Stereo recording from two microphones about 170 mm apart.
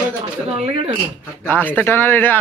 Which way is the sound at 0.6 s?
35° right (ahead or behind).